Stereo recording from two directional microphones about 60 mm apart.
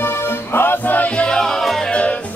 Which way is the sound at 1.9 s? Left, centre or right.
Left.